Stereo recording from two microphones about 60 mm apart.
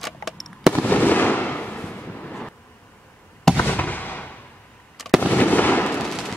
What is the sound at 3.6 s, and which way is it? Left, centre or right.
Fireworks, left.